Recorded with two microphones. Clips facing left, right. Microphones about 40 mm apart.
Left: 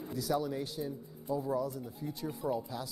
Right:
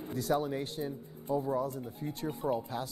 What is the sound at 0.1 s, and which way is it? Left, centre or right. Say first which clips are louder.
Speech: right 2 dB; right.